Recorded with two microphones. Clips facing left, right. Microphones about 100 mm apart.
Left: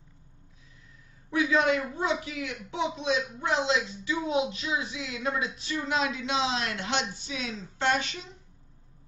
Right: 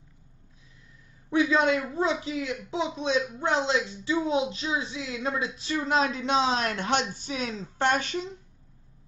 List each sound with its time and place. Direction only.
1.3 s a man's voice: 25° right (ahead or behind); by 8.2 s 45° right (ahead or behind)